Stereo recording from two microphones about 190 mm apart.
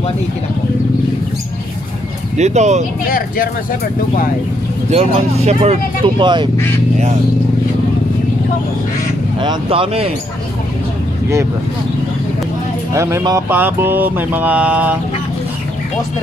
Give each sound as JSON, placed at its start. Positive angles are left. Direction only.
{"t": 2.3, "sound": "speech", "side_deg": -35}
{"t": 3.1, "sound": "speech", "side_deg": 50}
{"t": 4.9, "sound": "speech", "side_deg": -35}
{"t": 9.4, "sound": "speech", "side_deg": -25}
{"t": 12.9, "sound": "mantra", "side_deg": -15}